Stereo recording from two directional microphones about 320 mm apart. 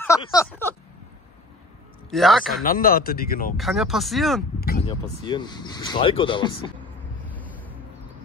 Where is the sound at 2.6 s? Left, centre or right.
Left.